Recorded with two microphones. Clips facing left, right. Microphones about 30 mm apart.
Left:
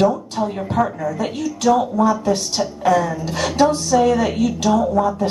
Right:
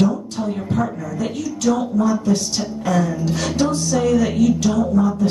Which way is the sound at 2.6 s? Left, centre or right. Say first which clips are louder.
Left 3 dB; centre.